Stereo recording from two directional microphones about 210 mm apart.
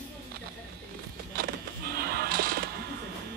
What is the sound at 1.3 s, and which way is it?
Music, 45° right (ahead or behind).